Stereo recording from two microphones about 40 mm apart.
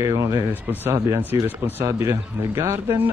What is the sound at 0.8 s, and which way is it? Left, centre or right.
Speech, right.